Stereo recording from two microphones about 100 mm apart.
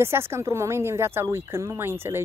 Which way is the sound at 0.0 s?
25° right (ahead or behind).